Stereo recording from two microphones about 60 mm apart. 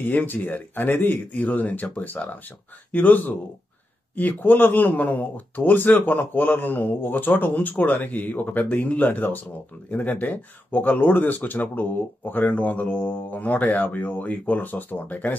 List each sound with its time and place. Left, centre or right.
0.0 s speech: left